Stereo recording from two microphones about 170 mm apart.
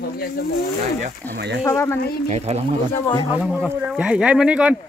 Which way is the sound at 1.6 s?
15° left (ahead or behind).